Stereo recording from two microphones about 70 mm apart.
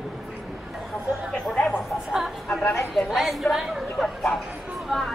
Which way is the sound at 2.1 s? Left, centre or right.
Centre.